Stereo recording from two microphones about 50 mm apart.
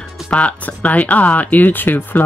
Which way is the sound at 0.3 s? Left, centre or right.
Left.